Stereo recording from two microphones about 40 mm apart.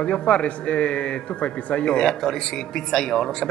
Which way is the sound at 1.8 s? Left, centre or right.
Centre.